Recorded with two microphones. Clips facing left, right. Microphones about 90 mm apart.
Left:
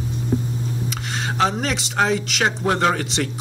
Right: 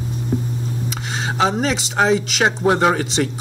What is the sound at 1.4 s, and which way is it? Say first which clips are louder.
A man's voice: right 3 dB; 5° right (ahead or behind).